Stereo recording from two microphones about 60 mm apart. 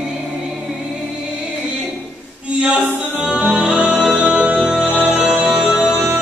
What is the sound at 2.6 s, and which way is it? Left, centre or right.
Music, right.